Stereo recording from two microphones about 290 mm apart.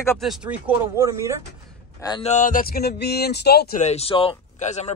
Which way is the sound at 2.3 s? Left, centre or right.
Left.